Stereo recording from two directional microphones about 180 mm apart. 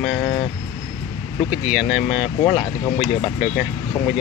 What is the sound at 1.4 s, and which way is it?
Speech, 5° right (ahead or behind).